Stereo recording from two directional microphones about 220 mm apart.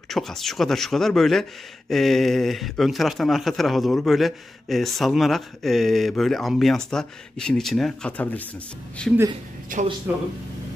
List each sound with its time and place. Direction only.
0.1 s speech: centre (ahead or behind)
9.7 s speech: 35° right (ahead or behind)
10.1 s speech: 5° right (ahead or behind)